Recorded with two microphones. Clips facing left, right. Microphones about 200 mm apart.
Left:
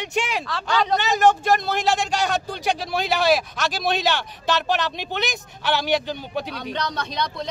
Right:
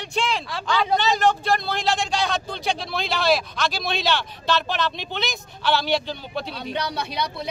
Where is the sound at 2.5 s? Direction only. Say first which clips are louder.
Left 2 dB; 10° left (ahead or behind).